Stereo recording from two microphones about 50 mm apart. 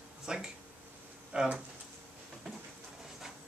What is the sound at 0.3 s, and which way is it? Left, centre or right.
Speech, centre.